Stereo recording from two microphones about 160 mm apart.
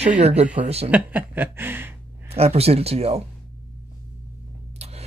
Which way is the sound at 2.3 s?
40° right (ahead or behind).